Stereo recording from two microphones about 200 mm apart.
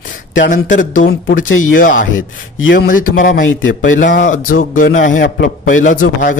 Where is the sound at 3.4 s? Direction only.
75° left (ahead or behind).